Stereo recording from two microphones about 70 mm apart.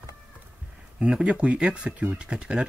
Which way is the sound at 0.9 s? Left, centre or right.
Centre.